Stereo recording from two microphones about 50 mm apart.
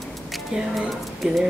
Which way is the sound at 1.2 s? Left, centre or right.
Centre.